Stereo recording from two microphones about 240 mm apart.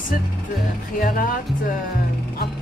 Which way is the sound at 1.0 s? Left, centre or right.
Left.